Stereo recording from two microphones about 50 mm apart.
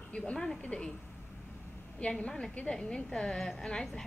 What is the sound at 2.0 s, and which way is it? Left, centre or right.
A woman's voice, left.